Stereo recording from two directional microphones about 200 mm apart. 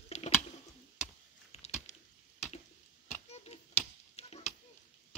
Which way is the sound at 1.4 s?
35° left (ahead or behind).